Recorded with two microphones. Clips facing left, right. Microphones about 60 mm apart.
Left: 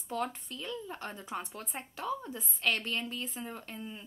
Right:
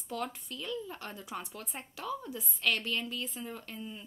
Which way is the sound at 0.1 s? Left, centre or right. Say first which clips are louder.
Left 2 dB; left.